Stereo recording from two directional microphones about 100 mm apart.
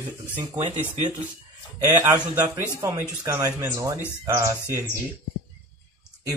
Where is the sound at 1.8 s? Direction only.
30° right (ahead or behind).